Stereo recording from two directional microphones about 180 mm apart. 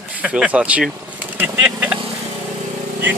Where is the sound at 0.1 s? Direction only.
5° right (ahead or behind).